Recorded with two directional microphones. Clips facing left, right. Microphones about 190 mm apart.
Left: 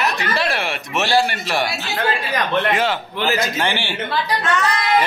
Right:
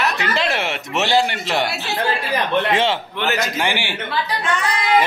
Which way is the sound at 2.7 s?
25° right (ahead or behind).